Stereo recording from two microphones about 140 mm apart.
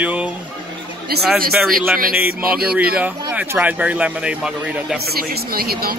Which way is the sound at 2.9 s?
10° right (ahead or behind).